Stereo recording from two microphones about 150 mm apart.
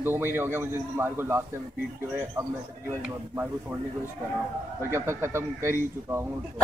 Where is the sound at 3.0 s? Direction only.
10° right (ahead or behind).